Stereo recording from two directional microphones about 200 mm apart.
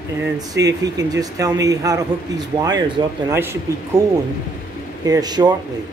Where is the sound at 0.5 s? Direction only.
15° right (ahead or behind).